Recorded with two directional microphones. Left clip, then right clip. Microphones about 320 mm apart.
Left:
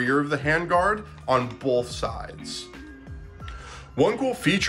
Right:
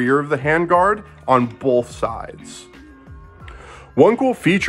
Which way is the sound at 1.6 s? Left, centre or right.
Right.